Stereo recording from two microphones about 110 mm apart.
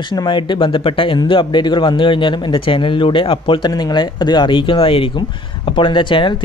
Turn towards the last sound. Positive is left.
turn(degrees=45)  # may be behind; listen again after turning